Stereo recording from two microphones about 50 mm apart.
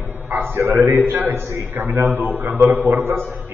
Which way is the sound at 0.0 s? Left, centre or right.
Right.